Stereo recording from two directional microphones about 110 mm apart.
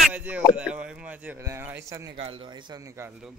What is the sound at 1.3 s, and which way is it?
Speech, 25° right (ahead or behind).